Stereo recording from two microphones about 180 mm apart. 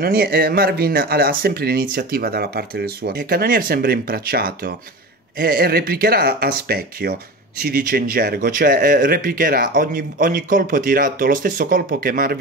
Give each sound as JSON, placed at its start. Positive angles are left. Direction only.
{"t": 0.0, "sound": "speech", "side_deg": -55}